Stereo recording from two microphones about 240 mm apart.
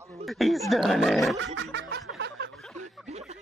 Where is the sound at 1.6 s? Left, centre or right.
Right.